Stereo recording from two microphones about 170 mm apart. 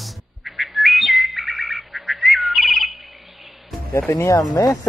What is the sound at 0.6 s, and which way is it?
Bird, centre (ahead or behind).